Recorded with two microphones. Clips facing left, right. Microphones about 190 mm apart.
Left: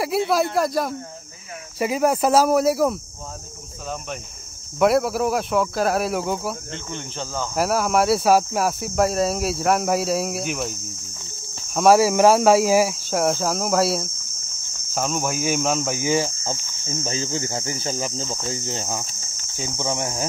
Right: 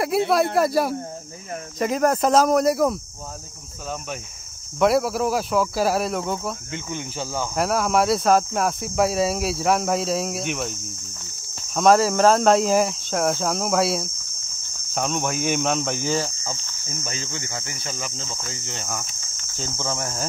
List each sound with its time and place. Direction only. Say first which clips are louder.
0.1 s speech: right 1 dB; centre (ahead or behind)
4.7 s speech: left 1 dB; centre (ahead or behind)
6.7 s speech: right 2 dB; 10° right (ahead or behind)
7.5 s speech: left 1 dB; centre (ahead or behind)
16.4 s cricket: left 4 dB; 30° left (ahead or behind)
19.5 s speech: left 3 dB; 15° left (ahead or behind)